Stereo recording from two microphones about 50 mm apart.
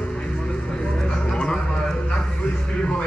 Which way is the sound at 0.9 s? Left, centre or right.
Centre.